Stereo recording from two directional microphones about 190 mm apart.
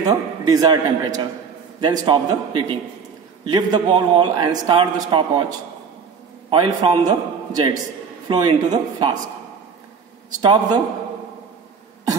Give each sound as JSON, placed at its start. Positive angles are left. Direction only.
{"t": 0.0, "sound": "a man's voice", "side_deg": -20}
{"t": 6.5, "sound": "a man's voice", "side_deg": -25}
{"t": 10.4, "sound": "a man's voice", "side_deg": -25}